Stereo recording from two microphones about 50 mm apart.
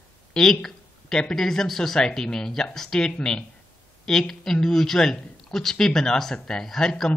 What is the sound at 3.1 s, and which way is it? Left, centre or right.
Speech, centre.